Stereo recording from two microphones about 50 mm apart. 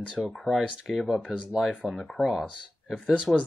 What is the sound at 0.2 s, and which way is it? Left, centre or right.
Speech, centre.